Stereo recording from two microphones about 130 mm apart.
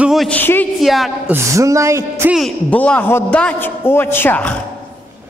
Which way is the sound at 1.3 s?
25° right (ahead or behind).